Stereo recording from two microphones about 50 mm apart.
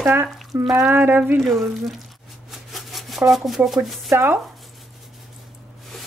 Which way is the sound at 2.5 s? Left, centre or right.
Centre.